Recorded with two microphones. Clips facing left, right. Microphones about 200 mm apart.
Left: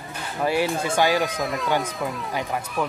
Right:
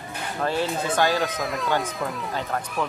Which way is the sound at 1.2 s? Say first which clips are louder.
Left 1 dB; centre (ahead or behind).